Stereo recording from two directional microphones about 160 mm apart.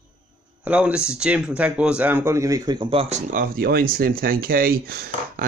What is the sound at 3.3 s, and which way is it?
Speech, 60° right (ahead or behind).